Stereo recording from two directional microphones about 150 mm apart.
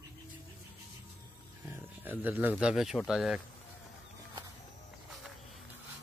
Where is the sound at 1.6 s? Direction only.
15° right (ahead or behind).